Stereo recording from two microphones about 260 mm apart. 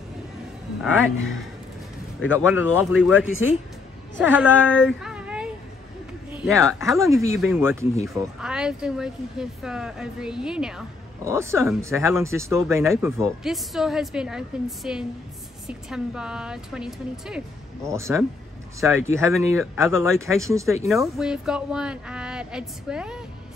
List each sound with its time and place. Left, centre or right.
0.8 s speech: centre
2.4 s speech: centre
3.2 s speech: left
4.2 s speech: centre
4.8 s a sound: centre
6.3 s speech: centre